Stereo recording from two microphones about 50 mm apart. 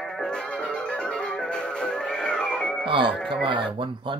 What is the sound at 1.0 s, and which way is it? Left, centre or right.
Music, centre.